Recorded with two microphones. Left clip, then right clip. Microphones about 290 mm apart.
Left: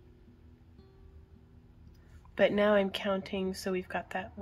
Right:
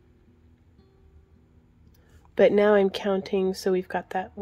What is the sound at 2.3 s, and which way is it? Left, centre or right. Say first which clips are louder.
Speech: right 7 dB; right.